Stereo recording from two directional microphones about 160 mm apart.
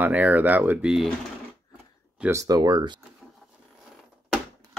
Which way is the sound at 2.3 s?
20° right (ahead or behind).